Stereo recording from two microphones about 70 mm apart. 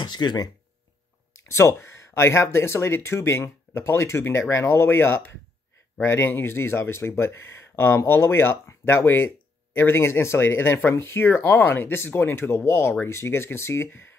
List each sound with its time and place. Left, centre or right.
0.0 s speech: left
1.3 s speech: left